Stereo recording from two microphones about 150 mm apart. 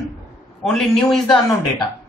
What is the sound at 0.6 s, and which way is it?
Speech, 5° left (ahead or behind).